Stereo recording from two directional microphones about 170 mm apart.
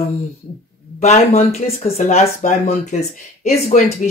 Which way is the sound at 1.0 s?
40° left (ahead or behind).